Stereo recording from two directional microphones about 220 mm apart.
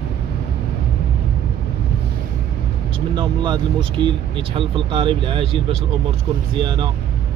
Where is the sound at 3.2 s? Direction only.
20° right (ahead or behind).